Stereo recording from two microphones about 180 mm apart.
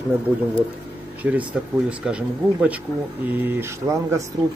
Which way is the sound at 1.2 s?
10° right (ahead or behind).